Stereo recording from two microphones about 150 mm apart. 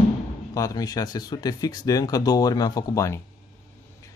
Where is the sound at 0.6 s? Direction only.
25° left (ahead or behind).